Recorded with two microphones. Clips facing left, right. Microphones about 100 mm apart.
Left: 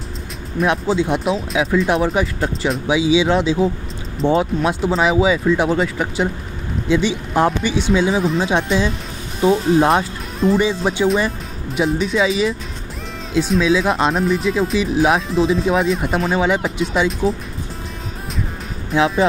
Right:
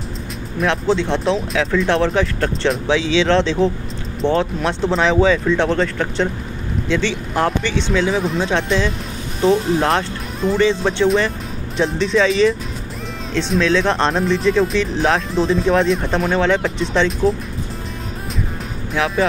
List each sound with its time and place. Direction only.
0.7 s speech: 10° left (ahead or behind)
8.2 s speech: centre (ahead or behind)
8.5 s speech: 15° left (ahead or behind)
18.9 s speech: 20° left (ahead or behind)